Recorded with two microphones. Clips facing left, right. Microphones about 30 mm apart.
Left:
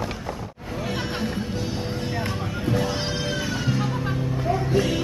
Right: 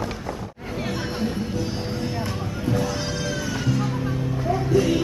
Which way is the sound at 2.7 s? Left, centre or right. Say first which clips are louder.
Even; left.